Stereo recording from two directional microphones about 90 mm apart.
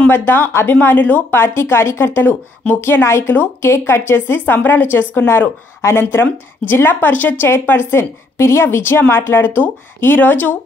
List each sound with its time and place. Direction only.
0.1 s a woman's voice: 25° left (ahead or behind)